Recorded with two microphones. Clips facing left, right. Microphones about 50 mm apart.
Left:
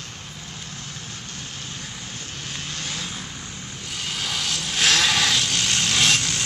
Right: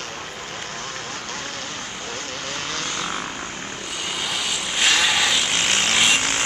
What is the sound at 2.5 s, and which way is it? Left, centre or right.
Vehicle, right.